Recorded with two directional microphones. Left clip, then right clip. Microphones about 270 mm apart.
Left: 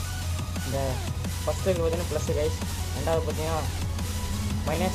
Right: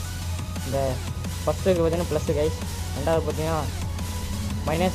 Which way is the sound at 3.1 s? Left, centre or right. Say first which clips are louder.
Right 3 dB; centre.